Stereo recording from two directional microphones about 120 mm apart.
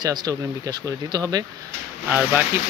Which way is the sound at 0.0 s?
35° right (ahead or behind).